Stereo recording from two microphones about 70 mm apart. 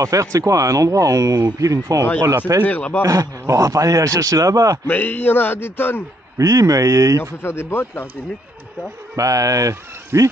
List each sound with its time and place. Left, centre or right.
0.0 s speech: right
2.6 s speech: left
3.0 s a man's voice: right
4.8 s speech: left
6.3 s a man's voice: right
7.4 s speech: left
9.1 s speech: right